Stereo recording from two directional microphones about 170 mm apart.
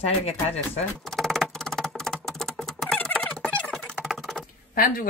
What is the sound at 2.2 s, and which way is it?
Typing, 5° left (ahead or behind).